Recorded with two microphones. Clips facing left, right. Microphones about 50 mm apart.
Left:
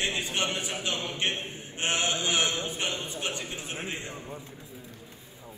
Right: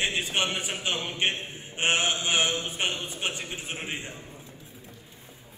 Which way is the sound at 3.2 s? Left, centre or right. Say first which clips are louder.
Right 1 dB; right.